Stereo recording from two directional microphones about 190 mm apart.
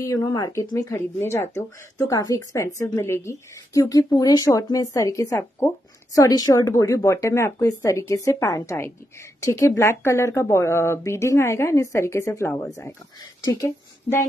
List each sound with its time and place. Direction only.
0.0 s speech: 15° left (ahead or behind)